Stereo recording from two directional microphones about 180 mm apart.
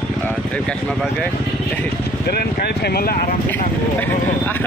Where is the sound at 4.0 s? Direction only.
10° left (ahead or behind).